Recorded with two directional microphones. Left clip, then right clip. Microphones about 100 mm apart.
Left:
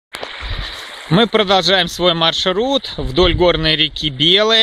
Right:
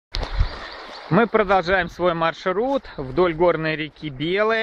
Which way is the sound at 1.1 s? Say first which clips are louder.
Left 4 dB; 25° left (ahead or behind).